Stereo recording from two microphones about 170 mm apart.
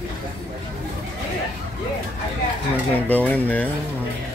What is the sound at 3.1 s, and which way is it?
Speech, 10° left (ahead or behind).